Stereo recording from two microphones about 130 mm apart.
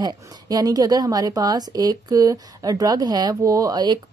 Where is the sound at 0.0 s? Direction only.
30° right (ahead or behind).